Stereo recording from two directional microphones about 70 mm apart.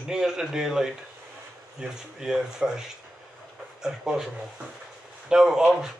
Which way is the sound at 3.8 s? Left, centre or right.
Centre.